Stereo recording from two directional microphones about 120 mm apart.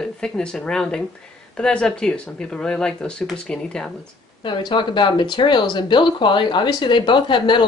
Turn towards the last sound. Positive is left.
turn(degrees=40)  # may be behind; listen again after turning